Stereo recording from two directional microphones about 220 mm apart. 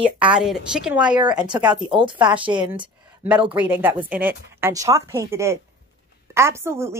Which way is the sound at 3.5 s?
10° right (ahead or behind).